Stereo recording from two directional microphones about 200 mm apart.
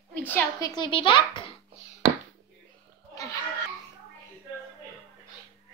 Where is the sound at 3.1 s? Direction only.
15° left (ahead or behind).